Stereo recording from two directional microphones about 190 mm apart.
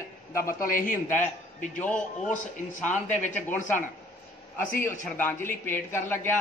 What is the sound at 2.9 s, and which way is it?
Speech, 40° left (ahead or behind).